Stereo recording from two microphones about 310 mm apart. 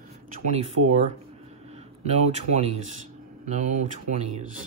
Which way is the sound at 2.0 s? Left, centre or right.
Right.